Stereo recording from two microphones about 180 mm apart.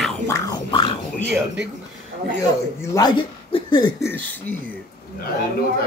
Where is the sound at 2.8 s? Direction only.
20° left (ahead or behind).